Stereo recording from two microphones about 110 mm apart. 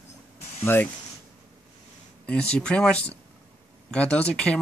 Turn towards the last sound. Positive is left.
turn(degrees=10)  # may be behind; listen again after turning